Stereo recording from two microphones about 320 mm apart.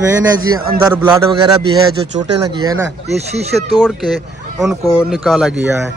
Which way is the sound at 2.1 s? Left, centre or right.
Right.